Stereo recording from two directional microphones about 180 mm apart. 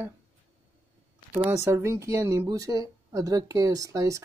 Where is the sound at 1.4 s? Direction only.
15° right (ahead or behind).